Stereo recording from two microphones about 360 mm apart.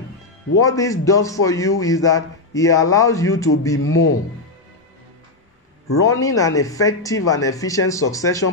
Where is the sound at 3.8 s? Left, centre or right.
Left.